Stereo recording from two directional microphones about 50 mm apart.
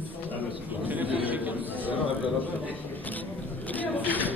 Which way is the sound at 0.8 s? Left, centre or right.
Right.